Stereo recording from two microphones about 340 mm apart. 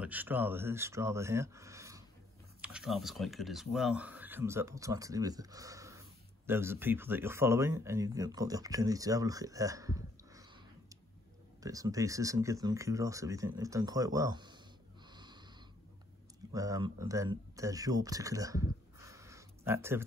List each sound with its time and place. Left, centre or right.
0.0 s speech: centre
11.6 s speech: centre
15.0 s snort: centre
16.5 s speech: centre